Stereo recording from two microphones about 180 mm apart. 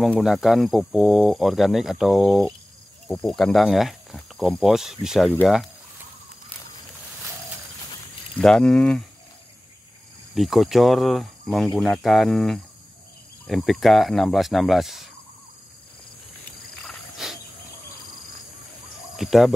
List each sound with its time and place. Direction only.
0.0 s speech: centre (ahead or behind)
8.4 s speech: 5° left (ahead or behind)
10.3 s speech: centre (ahead or behind)
16.8 s a sound: centre (ahead or behind)
19.1 s speech: centre (ahead or behind)